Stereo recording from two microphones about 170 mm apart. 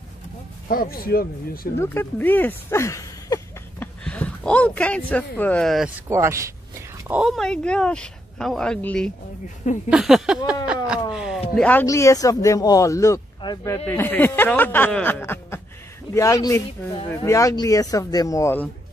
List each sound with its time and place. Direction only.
0.7 s speech: 60° left (ahead or behind)
1.8 s speech: 10° left (ahead or behind)
3.8 s speech: 10° left (ahead or behind)
5.9 s speech: 15° right (ahead or behind)
7.1 s speech: 5° right (ahead or behind)
11.1 s a sound: 5° right (ahead or behind)
11.5 s speech: 10° left (ahead or behind)
11.8 s speech: 20° left (ahead or behind)